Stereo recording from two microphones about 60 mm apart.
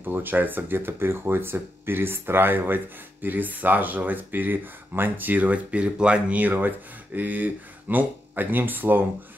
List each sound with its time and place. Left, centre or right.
0.0 s speech: right